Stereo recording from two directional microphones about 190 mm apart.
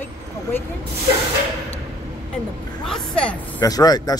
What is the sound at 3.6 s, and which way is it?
Speech, 20° left (ahead or behind).